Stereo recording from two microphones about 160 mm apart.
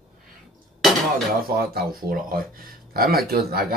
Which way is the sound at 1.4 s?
70° right (ahead or behind).